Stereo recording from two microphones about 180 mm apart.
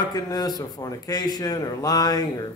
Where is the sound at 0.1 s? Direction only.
20° left (ahead or behind).